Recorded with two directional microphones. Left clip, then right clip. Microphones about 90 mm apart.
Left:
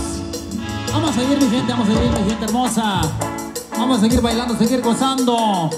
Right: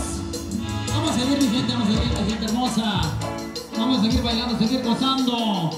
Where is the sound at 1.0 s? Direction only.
25° left (ahead or behind).